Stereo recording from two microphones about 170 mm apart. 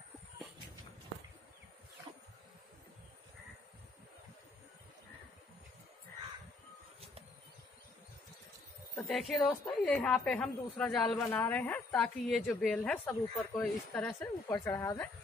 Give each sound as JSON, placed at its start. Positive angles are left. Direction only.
{"t": 8.9, "sound": "a woman's voice", "side_deg": 0}
{"t": 14.5, "sound": "a woman's voice", "side_deg": 20}